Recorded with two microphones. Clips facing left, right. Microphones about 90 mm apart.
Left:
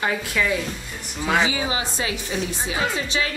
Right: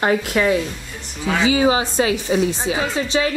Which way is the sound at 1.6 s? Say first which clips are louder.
Right 9 dB; 35° right (ahead or behind).